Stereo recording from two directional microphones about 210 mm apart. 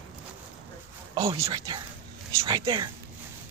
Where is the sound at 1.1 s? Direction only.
25° right (ahead or behind).